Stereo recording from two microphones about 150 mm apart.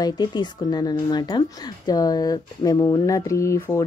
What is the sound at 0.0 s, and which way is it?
Speech, 30° left (ahead or behind).